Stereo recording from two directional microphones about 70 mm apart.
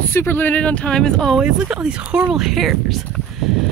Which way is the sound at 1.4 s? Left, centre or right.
Centre.